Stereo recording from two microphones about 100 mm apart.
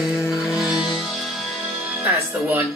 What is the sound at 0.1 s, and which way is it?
Music, 25° left (ahead or behind).